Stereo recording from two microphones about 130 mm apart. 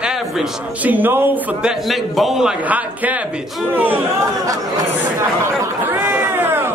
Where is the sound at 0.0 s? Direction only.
5° right (ahead or behind).